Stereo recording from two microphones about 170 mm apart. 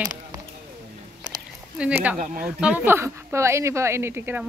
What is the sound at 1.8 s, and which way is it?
Speech, 5° right (ahead or behind).